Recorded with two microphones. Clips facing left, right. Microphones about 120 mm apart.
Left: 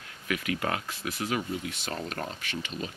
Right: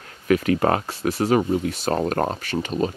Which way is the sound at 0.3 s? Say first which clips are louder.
Right 12 dB; 40° right (ahead or behind).